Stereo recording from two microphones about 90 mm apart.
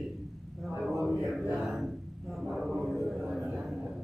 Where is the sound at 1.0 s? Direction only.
5° right (ahead or behind).